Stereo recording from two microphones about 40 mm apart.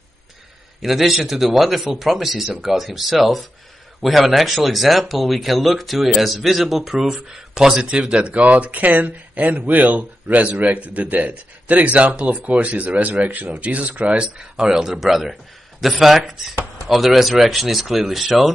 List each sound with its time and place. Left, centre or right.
0.8 s speech: centre
7.8 s speech: right
14.4 s speech: centre
15.0 s speech: centre